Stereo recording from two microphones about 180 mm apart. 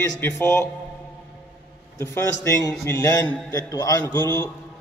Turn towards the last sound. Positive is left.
turn(degrees=15)  # may be behind; listen again after turning